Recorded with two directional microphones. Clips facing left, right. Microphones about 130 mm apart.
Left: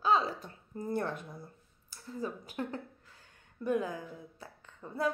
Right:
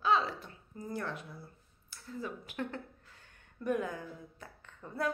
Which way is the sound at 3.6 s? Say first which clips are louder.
Left 2 dB; 25° left (ahead or behind).